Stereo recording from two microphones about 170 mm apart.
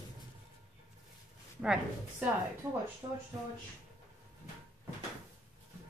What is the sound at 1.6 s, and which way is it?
Speech, 5° right (ahead or behind).